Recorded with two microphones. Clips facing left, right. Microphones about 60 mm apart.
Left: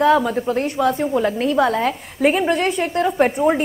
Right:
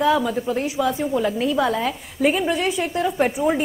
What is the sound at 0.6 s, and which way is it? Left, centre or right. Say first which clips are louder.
Speech: left 3 dB; centre.